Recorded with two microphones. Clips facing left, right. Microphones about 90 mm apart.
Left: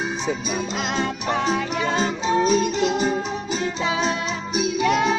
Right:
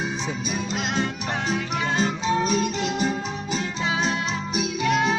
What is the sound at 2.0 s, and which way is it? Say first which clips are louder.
Music: left 2 dB; 25° left (ahead or behind).